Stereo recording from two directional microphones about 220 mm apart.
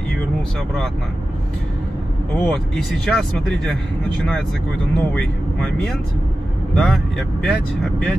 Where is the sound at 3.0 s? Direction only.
5° left (ahead or behind).